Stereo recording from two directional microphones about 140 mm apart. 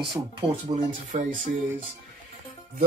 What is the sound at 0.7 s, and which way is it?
Speech, 30° right (ahead or behind).